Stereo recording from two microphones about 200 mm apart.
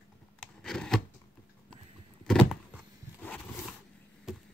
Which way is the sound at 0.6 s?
Centre (ahead or behind).